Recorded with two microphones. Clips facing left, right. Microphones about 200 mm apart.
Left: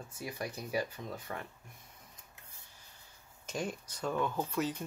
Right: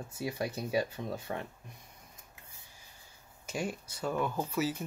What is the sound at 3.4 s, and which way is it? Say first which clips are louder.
Speech: right 2 dB; 10° right (ahead or behind).